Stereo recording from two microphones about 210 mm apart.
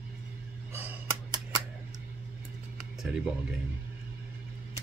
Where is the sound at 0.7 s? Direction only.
15° right (ahead or behind).